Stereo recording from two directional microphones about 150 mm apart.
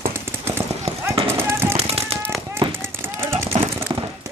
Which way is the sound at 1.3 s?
15° right (ahead or behind).